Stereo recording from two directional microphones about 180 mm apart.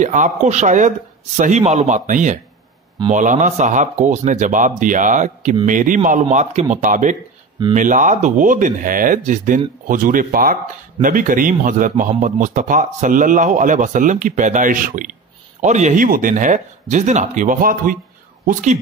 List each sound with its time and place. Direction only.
0.0 s a man's voice: 45° right (ahead or behind)